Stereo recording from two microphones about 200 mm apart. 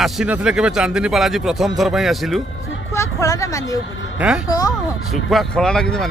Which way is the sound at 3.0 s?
15° left (ahead or behind).